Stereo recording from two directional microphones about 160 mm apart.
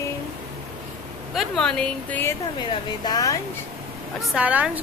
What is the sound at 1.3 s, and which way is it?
A woman's voice, centre (ahead or behind).